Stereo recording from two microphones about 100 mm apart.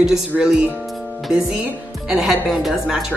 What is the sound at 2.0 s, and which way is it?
Speech, 5° right (ahead or behind).